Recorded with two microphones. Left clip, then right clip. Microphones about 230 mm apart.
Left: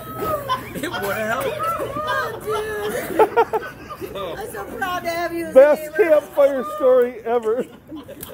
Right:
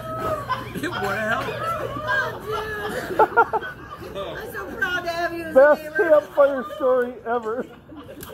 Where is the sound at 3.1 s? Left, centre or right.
Centre.